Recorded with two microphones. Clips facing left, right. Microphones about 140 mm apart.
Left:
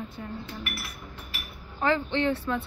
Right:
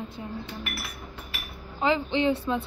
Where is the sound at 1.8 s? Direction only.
15° right (ahead or behind).